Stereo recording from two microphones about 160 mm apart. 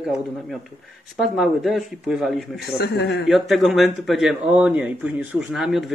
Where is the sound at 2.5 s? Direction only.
90° left.